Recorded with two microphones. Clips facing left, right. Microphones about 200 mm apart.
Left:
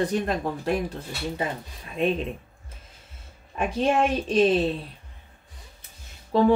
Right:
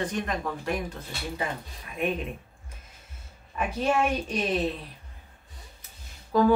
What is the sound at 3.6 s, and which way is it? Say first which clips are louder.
A woman's voice: left 3 dB; 30° left (ahead or behind).